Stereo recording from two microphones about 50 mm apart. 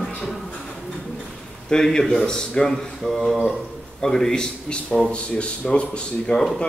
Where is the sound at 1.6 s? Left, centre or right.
Centre.